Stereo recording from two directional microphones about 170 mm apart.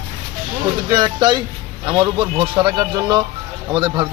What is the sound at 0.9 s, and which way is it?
Speech, 25° right (ahead or behind).